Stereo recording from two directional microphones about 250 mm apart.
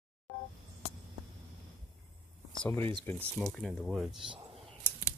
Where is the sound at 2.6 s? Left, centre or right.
Centre.